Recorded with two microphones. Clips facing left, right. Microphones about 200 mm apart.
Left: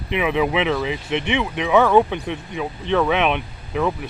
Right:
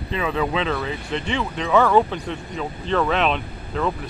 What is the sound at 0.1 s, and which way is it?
Speech, 15° left (ahead or behind).